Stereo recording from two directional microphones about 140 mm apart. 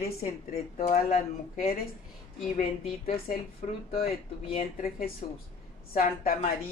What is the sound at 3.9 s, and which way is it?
Speech, 45° left (ahead or behind).